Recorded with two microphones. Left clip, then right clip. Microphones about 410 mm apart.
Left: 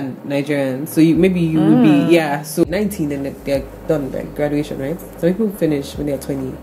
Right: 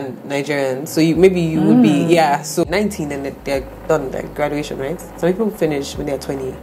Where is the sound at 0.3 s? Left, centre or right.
Right.